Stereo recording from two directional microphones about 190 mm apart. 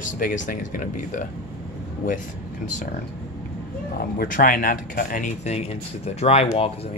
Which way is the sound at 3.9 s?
50° left (ahead or behind).